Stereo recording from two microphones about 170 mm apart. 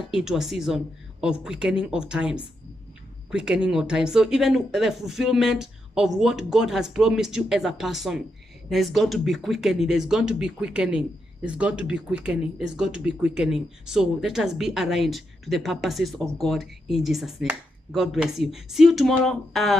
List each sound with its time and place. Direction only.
0.1 s speech: centre (ahead or behind)